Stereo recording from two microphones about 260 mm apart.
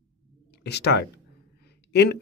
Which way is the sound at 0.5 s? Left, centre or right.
Left.